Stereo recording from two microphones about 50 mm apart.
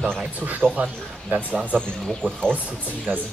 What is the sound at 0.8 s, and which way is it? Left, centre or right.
Speech, right.